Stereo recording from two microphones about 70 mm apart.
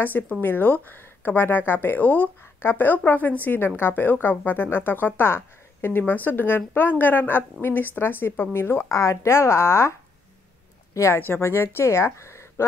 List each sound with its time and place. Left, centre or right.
0.0 s speech: left
8.8 s speech: left
11.1 s speech: left